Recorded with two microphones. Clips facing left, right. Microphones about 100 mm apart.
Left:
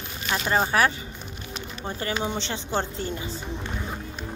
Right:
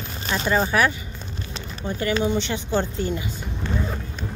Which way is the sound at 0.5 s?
35° left (ahead or behind).